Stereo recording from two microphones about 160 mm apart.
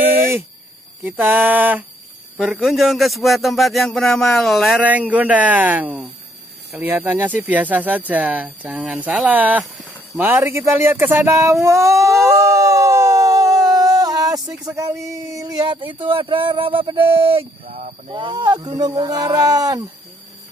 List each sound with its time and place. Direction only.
1.0 s a man's voice: 10° right (ahead or behind)
11.7 s howl: 20° right (ahead or behind)
14.7 s speech: 20° right (ahead or behind)